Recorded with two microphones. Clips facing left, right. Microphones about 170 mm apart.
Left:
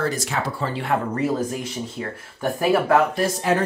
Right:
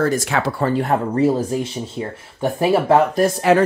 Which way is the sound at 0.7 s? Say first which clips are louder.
Right 4 dB; 40° right (ahead or behind).